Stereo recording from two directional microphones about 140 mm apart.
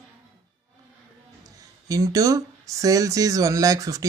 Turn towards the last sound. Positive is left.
turn(degrees=-25)  # may be behind; listen again after turning